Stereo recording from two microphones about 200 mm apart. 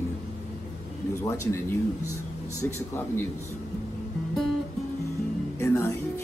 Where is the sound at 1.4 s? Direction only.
15° left (ahead or behind).